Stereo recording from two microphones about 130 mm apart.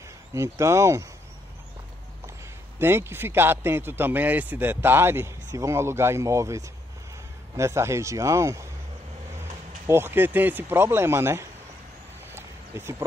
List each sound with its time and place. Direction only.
0.3 s speech: 20° right (ahead or behind)
2.8 s a man's voice: 15° right (ahead or behind)
9.8 s a man's voice: 15° right (ahead or behind)
12.3 s a sound: 20° right (ahead or behind)